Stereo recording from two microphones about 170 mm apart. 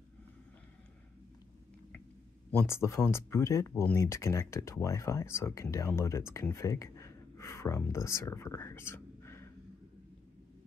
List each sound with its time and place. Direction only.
2.5 s speech: 15° left (ahead or behind)